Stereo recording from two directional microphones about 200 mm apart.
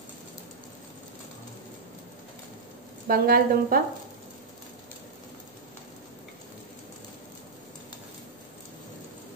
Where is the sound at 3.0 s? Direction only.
50° right (ahead or behind).